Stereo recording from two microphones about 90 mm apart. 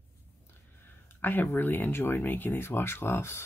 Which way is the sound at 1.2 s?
20° left (ahead or behind).